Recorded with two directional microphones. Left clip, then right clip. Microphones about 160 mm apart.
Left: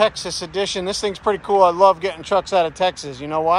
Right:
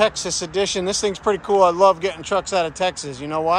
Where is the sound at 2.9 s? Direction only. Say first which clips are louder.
Even; 50° right (ahead or behind).